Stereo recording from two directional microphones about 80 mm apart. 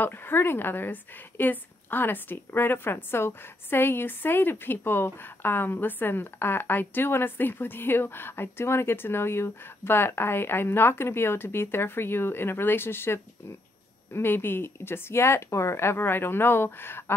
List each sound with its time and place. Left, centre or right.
0.0 s a woman's voice: left